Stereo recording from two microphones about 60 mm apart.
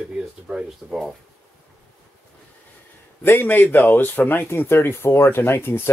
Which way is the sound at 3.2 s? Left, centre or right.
Left.